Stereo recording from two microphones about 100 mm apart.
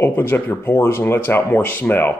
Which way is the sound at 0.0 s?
20° left (ahead or behind).